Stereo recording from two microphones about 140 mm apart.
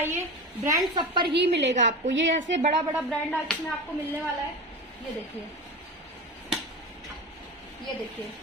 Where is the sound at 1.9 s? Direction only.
55° right (ahead or behind).